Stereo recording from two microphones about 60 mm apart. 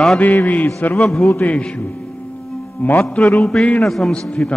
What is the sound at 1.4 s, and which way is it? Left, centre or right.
Music, centre.